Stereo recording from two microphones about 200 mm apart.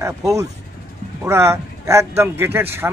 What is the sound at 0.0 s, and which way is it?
Speech, 15° right (ahead or behind).